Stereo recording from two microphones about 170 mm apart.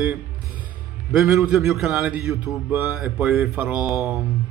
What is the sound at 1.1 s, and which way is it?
A man's voice, 5° right (ahead or behind).